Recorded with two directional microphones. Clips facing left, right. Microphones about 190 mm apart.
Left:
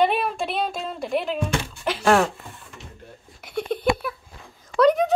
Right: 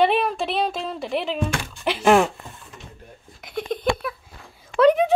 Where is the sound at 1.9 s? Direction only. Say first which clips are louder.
Right 2 dB; 15° right (ahead or behind).